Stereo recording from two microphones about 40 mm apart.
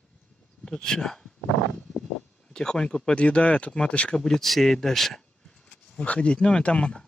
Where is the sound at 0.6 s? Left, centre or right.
Centre.